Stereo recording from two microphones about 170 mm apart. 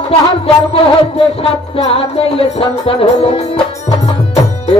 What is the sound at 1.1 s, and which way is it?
Music, 35° left (ahead or behind).